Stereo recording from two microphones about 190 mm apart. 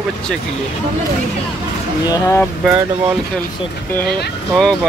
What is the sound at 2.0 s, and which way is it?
Speech, 20° left (ahead or behind).